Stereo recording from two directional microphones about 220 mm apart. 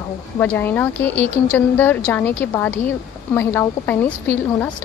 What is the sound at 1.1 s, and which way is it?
Speech, 30° right (ahead or behind).